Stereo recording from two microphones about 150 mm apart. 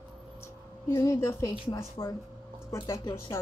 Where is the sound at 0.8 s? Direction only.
20° left (ahead or behind).